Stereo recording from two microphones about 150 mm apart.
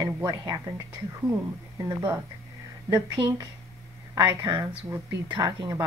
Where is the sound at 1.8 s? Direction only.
30° right (ahead or behind).